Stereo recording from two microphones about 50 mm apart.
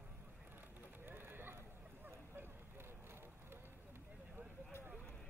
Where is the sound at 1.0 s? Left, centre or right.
Right.